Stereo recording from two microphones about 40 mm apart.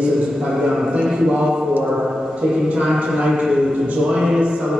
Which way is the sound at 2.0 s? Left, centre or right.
Centre.